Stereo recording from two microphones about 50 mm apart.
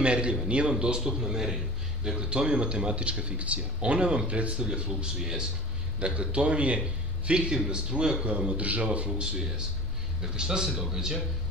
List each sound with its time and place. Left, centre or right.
0.0 s a man's voice: right